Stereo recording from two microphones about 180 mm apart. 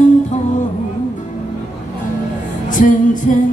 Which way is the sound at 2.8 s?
45° left (ahead or behind).